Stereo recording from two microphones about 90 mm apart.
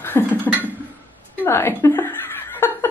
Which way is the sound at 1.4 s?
25° left (ahead or behind).